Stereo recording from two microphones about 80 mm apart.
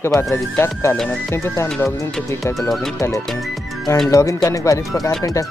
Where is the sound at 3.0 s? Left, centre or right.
Left.